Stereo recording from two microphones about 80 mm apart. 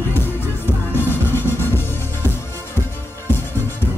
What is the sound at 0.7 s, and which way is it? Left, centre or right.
Music, left.